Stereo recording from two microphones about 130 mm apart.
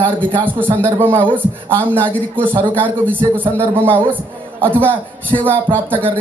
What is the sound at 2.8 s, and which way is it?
Speech, 10° left (ahead or behind).